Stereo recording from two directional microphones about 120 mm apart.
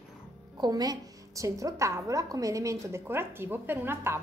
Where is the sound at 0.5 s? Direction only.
35° right (ahead or behind).